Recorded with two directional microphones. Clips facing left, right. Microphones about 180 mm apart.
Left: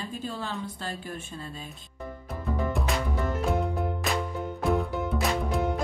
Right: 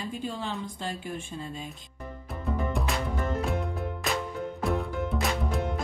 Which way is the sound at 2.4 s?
Centre (ahead or behind).